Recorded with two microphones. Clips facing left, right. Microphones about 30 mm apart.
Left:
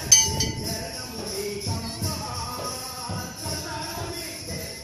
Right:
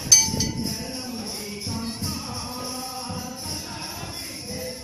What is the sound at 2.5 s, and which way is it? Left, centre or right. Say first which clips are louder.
Music: right 1 dB; centre.